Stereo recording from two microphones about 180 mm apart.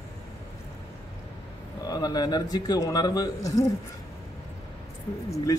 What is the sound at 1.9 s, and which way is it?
Speech, 20° left (ahead or behind).